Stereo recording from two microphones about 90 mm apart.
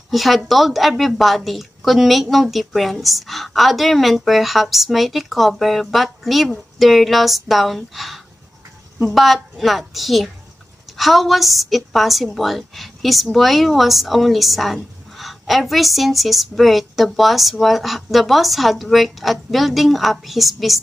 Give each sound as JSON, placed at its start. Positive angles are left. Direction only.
{"t": 0.1, "sound": "a woman's voice", "side_deg": 0}